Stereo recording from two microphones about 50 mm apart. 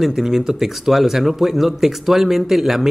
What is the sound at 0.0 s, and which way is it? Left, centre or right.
Speech, centre.